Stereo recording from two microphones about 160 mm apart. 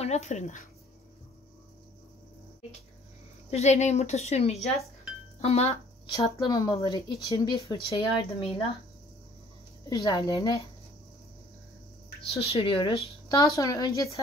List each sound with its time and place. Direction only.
0.0 s a woman's voice: 45° left (ahead or behind)
3.4 s a woman's voice: 45° left (ahead or behind)
6.3 s speech: 25° left (ahead or behind)
9.8 s speech: 25° left (ahead or behind)
12.2 s speech: 40° left (ahead or behind)
13.3 s speech: 20° left (ahead or behind)